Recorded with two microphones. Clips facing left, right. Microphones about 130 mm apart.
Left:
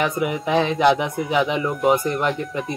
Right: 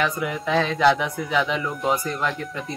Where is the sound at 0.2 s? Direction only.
20° left (ahead or behind).